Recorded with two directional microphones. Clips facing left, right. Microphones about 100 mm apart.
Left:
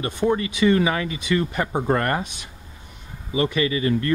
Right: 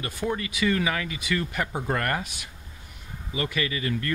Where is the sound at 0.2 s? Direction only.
15° left (ahead or behind).